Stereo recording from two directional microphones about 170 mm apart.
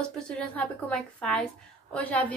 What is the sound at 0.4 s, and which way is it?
A woman's voice, 5° left (ahead or behind).